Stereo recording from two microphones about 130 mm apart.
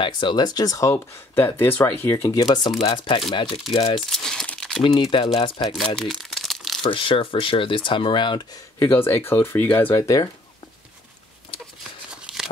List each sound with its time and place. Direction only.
0.0 s speech: 40° left (ahead or behind)
2.8 s speech: 45° left (ahead or behind)
4.0 s crumpling: 5° left (ahead or behind)
4.8 s speech: 35° left (ahead or behind)
5.8 s crumpling: centre (ahead or behind)
6.8 s speech: 40° left (ahead or behind)
8.7 s speech: 20° left (ahead or behind)